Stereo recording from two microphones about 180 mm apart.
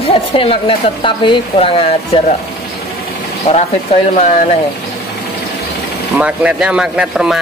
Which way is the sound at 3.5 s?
35° left (ahead or behind).